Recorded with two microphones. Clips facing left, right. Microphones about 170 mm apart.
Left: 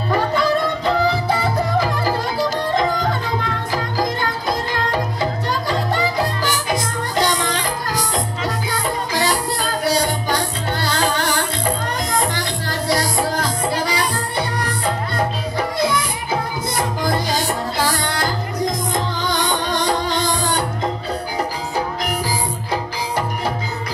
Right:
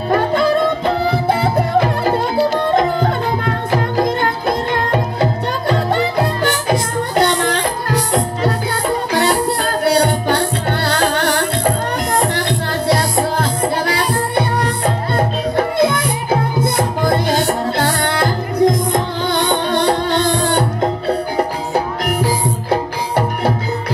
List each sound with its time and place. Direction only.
0.1 s music: 55° right (ahead or behind)